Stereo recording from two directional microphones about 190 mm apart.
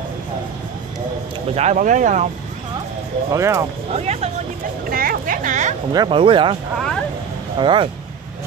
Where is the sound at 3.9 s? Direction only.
35° right (ahead or behind).